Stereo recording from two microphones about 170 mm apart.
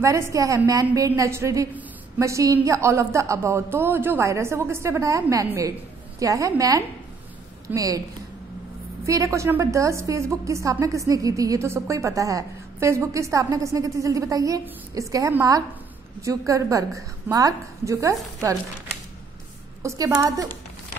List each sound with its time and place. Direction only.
0.0 s a woman's voice: 15° right (ahead or behind)
9.0 s a woman's voice: 20° right (ahead or behind)
19.8 s a woman's voice: 15° right (ahead or behind)